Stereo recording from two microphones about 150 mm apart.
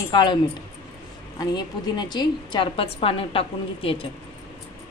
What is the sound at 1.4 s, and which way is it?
A woman's voice, 30° left (ahead or behind).